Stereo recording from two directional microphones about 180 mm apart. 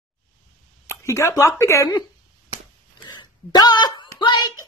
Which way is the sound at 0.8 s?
15° left (ahead or behind).